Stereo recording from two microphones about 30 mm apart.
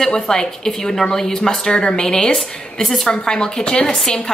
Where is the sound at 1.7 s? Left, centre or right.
Left.